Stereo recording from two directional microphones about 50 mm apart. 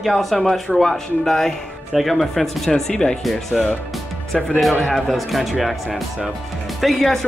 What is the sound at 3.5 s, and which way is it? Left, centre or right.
Speech, centre.